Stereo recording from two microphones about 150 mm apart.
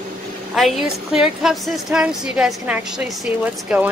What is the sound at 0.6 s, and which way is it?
A woman's voice, centre (ahead or behind).